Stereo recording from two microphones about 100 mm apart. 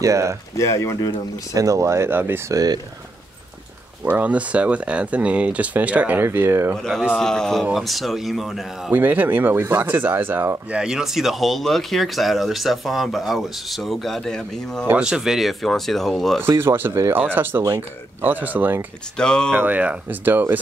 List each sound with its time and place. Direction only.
0.0 s speech: 30° right (ahead or behind)
0.6 s speech: 30° left (ahead or behind)
1.5 s speech: 35° right (ahead or behind)
2.5 s speech: 40° right (ahead or behind)
4.0 s speech: 15° right (ahead or behind)
6.8 s speech: 5° left (ahead or behind)
8.9 s speech: 20° right (ahead or behind)
10.7 s speech: 5° right (ahead or behind)
15.0 s speech: 5° right (ahead or behind)
16.4 s speech: 25° right (ahead or behind)
19.1 s speech: 10° left (ahead or behind)
19.5 s speech: 15° right (ahead or behind)